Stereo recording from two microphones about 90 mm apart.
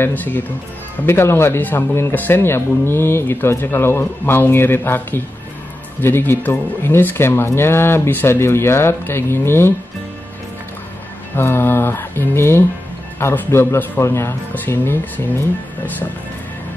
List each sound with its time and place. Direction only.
0.0 s speech: 20° left (ahead or behind)
11.3 s speech: 25° left (ahead or behind)